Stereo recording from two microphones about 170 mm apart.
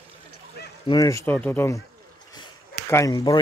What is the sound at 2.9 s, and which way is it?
Speech, 20° left (ahead or behind).